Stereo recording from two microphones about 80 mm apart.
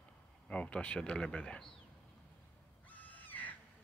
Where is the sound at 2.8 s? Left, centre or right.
Centre.